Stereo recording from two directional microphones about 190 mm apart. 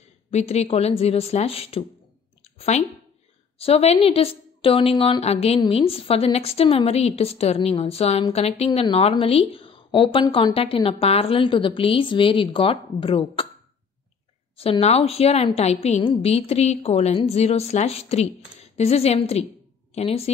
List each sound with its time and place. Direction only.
0.3 s a woman's voice: 35° left (ahead or behind)
3.5 s a woman's voice: 30° left (ahead or behind)
14.6 s a woman's voice: 30° left (ahead or behind)